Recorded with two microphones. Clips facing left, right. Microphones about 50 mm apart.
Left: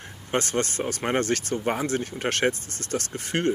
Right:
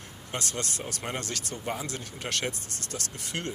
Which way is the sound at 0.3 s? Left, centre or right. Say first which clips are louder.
Left 9 dB; left.